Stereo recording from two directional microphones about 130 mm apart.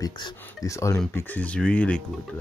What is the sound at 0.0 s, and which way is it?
Speech, 30° left (ahead or behind).